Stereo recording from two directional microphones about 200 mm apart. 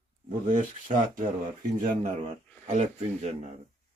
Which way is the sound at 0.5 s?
40° right (ahead or behind).